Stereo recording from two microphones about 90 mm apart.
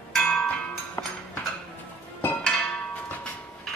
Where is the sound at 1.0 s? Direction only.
40° left (ahead or behind).